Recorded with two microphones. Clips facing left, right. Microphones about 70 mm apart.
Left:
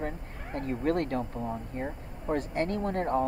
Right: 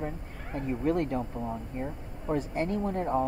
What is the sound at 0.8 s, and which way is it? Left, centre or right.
Speech, left.